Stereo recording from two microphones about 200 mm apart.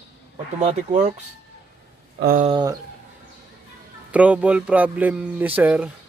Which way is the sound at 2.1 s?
45° right (ahead or behind).